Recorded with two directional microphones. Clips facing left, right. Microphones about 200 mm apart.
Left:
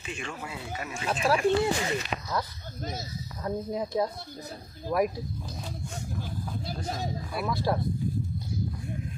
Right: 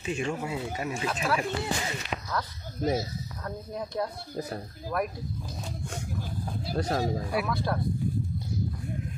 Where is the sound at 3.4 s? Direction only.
15° left (ahead or behind).